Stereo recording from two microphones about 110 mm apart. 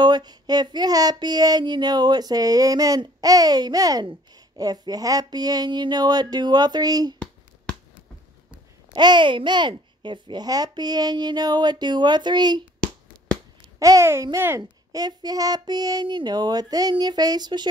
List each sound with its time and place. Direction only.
0.0 s speech: 40° right (ahead or behind)
8.9 s speech: 45° right (ahead or behind)
13.7 s speech: 30° right (ahead or behind)
14.6 s speech: 35° right (ahead or behind)